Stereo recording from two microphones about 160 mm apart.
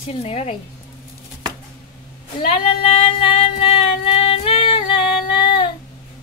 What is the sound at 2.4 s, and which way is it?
Female singing, 35° left (ahead or behind).